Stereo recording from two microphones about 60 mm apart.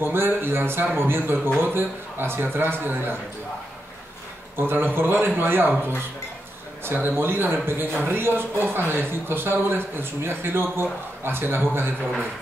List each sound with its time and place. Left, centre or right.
0.0 s a man's voice: right
4.6 s a man's voice: right
6.8 s a man's voice: right